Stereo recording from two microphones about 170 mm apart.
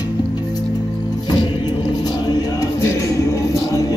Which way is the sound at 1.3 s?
25° left (ahead or behind).